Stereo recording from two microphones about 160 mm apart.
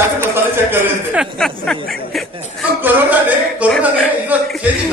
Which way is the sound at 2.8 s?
10° right (ahead or behind).